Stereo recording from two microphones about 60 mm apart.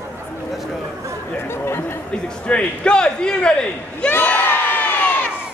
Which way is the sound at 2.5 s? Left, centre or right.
Centre.